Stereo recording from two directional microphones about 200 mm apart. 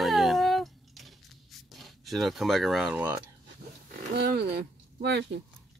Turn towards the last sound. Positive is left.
turn(degrees=-55)  # may be behind; listen again after turning